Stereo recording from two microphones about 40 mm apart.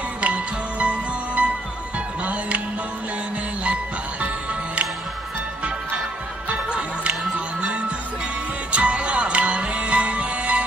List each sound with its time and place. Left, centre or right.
0.2 s music: right
3.6 s music: right
6.5 s music: right